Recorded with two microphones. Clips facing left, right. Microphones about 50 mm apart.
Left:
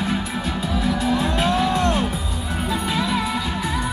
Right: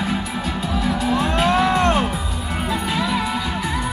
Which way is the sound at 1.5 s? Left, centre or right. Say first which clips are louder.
Right 4 dB; right.